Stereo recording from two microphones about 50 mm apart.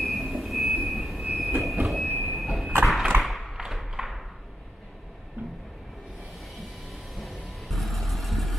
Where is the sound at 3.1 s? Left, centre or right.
Right.